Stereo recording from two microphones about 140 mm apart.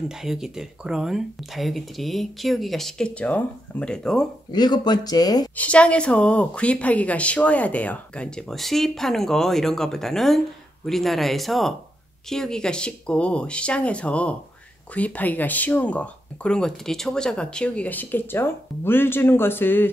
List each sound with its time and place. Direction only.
0.1 s speech: 5° right (ahead or behind)
4.5 s speech: 30° left (ahead or behind)
5.6 s speech: 10° left (ahead or behind)